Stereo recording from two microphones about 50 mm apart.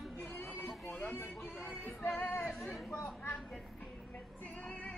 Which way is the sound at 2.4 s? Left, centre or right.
Centre.